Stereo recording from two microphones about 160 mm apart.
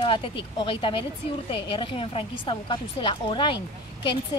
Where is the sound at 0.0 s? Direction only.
35° left (ahead or behind).